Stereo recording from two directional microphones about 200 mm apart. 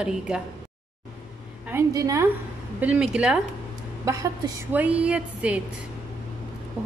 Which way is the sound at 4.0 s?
15° right (ahead or behind).